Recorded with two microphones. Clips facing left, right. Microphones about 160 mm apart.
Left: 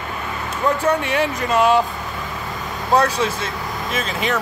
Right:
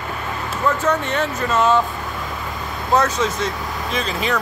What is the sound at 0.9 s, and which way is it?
Speech, 10° left (ahead or behind).